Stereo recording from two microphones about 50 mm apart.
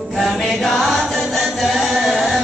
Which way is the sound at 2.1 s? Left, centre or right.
Centre.